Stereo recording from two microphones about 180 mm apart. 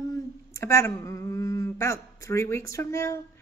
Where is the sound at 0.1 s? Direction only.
15° left (ahead or behind).